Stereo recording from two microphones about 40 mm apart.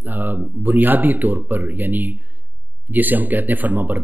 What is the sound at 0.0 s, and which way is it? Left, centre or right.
Speech, right.